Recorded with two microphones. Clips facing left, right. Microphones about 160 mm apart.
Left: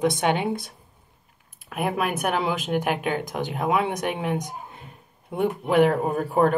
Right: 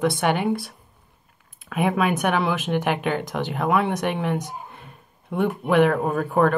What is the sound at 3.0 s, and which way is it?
Speech, 65° right (ahead or behind).